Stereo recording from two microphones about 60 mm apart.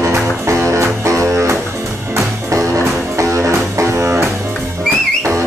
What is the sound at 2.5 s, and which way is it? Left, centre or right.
Music, right.